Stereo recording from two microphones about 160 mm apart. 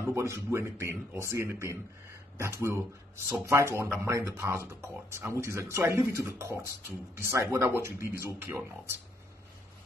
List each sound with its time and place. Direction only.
0.0 s speech: 15° right (ahead or behind)